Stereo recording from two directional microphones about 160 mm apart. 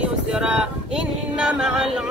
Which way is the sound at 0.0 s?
5° right (ahead or behind).